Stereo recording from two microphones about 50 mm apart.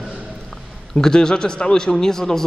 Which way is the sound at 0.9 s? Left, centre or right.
Centre.